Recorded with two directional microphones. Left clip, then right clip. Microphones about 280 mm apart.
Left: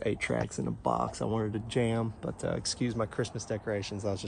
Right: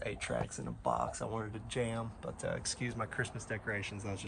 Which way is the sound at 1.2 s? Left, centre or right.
Right.